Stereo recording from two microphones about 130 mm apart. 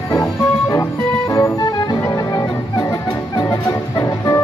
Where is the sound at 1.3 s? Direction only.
25° left (ahead or behind).